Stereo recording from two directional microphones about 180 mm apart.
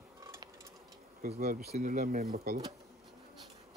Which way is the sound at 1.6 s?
40° right (ahead or behind).